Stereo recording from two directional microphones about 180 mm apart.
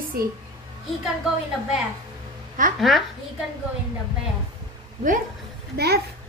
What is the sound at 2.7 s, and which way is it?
Speech, centre (ahead or behind).